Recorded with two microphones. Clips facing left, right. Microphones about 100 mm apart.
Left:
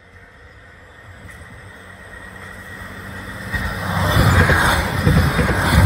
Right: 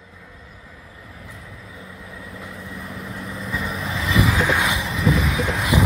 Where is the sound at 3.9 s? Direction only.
30° left (ahead or behind).